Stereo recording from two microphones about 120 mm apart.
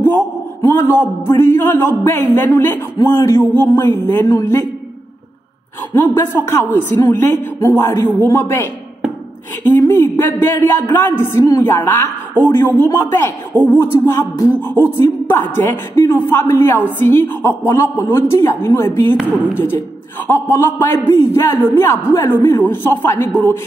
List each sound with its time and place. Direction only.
0.7 s a man's voice: 20° left (ahead or behind)
6.1 s a man's voice: 20° left (ahead or behind)
9.8 s a man's voice: 20° left (ahead or behind)